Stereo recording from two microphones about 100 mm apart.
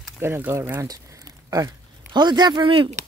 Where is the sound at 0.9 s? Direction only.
35° right (ahead or behind).